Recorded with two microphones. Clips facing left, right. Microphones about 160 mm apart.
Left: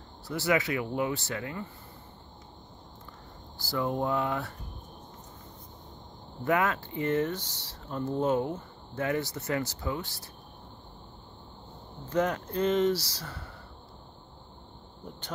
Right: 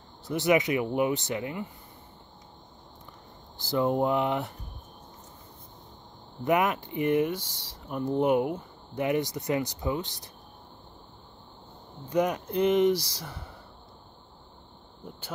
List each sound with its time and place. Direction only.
0.3 s speech: 20° right (ahead or behind)
3.5 s speech: 20° right (ahead or behind)
6.4 s speech: 20° right (ahead or behind)
12.1 s speech: 15° right (ahead or behind)